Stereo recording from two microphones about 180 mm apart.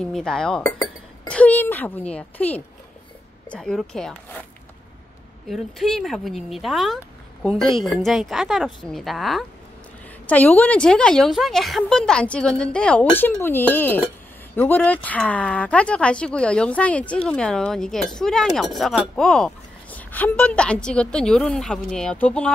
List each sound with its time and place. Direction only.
0.0 s speech: 5° left (ahead or behind)
5.5 s speech: centre (ahead or behind)